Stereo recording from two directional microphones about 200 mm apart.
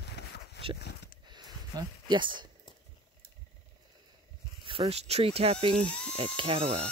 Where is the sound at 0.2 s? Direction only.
55° left (ahead or behind).